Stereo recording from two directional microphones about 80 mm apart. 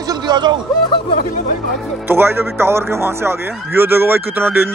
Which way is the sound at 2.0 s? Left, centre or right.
Right.